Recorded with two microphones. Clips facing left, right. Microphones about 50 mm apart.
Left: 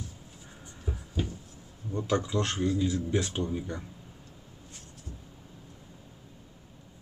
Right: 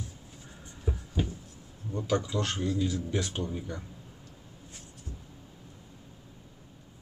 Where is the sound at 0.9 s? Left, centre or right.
Centre.